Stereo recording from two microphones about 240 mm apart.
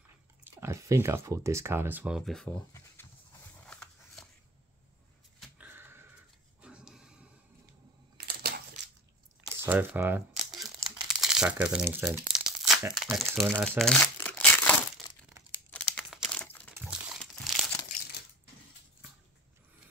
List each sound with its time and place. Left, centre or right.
0.4 s speech: centre
3.6 s a sound: centre
5.6 s a sound: centre
8.3 s crushing: right
9.5 s crumpling: centre
15.9 s crumpling: centre
16.7 s crumpling: centre